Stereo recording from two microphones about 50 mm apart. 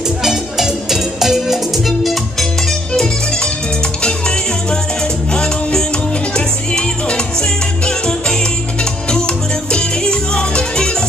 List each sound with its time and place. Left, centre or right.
0.2 s music: centre
5.3 s music: centre